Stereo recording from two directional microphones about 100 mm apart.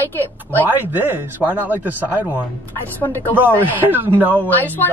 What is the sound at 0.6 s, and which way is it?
Speech, 20° right (ahead or behind).